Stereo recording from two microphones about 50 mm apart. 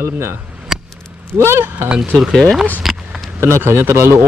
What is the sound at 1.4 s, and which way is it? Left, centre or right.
Speech, right.